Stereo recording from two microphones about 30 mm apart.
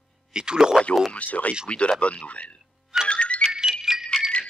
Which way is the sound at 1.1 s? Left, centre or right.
Left.